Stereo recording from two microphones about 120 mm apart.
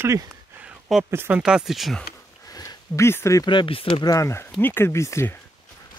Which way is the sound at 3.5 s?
45° left (ahead or behind).